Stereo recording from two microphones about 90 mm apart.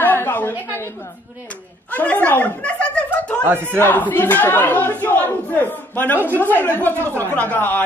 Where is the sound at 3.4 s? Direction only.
25° right (ahead or behind).